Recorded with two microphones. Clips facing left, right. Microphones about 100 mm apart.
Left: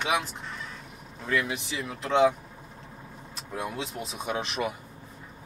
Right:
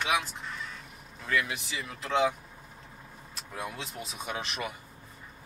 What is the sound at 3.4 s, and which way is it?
Speech, centre (ahead or behind).